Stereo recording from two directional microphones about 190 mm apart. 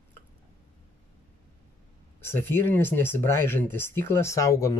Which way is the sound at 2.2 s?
10° left (ahead or behind).